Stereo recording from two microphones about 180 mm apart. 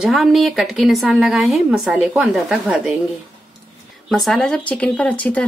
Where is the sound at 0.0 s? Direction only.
Centre (ahead or behind).